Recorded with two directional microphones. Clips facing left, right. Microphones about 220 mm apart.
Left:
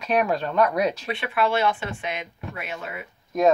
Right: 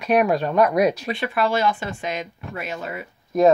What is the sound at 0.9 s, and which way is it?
Speech, 35° right (ahead or behind).